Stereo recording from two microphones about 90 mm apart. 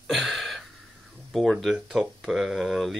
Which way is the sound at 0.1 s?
Centre (ahead or behind).